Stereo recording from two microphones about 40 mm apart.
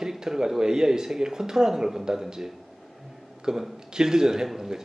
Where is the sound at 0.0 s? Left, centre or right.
Centre.